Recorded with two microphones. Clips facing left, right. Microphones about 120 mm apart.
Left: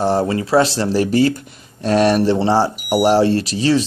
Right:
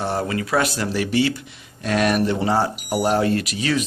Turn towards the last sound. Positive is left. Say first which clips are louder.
# left 6 dB
turn(degrees=35)  # may be behind; listen again after turning